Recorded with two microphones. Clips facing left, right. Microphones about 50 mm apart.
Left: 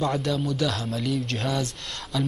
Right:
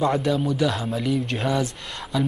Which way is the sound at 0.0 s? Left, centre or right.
Centre.